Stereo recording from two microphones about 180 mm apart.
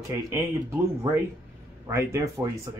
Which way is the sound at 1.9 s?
15° right (ahead or behind).